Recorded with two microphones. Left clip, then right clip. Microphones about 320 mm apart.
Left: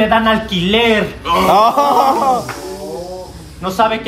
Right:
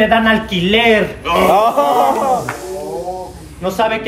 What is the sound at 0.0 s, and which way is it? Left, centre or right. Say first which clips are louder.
Speech: even; centre.